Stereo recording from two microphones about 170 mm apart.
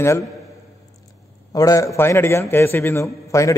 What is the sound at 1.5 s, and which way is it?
A man's voice, 20° left (ahead or behind).